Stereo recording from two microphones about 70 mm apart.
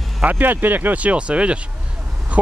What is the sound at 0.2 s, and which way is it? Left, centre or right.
Speech, right.